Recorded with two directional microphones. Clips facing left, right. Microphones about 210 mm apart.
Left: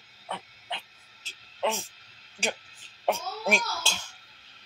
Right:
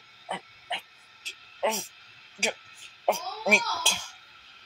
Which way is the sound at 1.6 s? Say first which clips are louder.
Even; 15° right (ahead or behind).